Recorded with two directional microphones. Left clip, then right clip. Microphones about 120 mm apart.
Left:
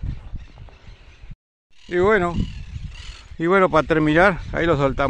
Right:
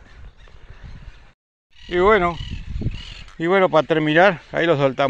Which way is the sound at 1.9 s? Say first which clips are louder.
Right 2 dB; 20° left (ahead or behind).